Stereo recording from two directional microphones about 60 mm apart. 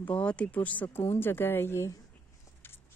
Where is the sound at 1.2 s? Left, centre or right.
Left.